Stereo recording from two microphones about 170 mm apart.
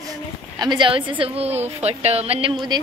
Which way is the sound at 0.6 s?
25° right (ahead or behind).